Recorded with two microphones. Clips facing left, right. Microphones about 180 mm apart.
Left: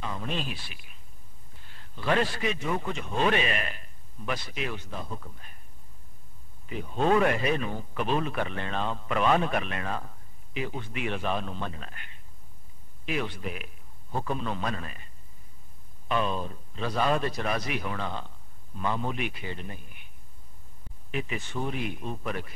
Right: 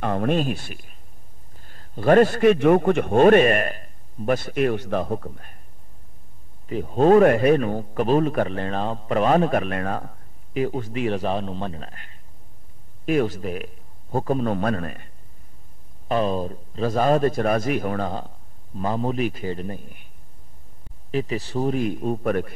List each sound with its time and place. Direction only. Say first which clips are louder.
0.0 s a man's voice: right 12 dB; 60° right (ahead or behind)
4.8 s a man's voice: right 13 dB; 70° right (ahead or behind); by 5.6 s 55° right (ahead or behind)
6.7 s a man's voice: right 9 dB; 40° right (ahead or behind)
16.1 s a man's voice: right 6 dB; 40° right (ahead or behind)
21.1 s a man's voice: right 8 dB; 35° right (ahead or behind); by 22.5 s 50° right (ahead or behind)